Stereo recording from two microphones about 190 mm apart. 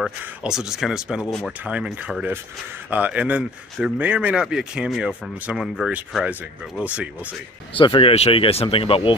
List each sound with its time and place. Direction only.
0.0 s speech: 5° right (ahead or behind)
7.7 s speech: 25° left (ahead or behind)